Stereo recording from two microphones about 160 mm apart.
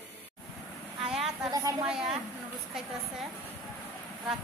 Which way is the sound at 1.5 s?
20° right (ahead or behind).